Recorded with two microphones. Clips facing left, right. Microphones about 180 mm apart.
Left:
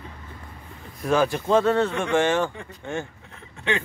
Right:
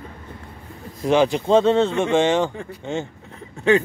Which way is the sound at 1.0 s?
20° right (ahead or behind).